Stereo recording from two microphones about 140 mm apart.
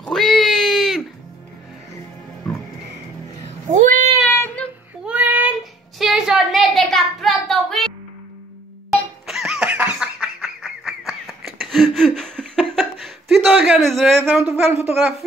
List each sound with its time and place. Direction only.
0.0 s a sound: centre (ahead or behind)
3.4 s a sound: 60° right (ahead or behind)
4.2 s child singing: 15° left (ahead or behind)
5.0 s child singing: 10° right (ahead or behind)
9.2 s laughter: centre (ahead or behind)
14.2 s speech: 10° right (ahead or behind)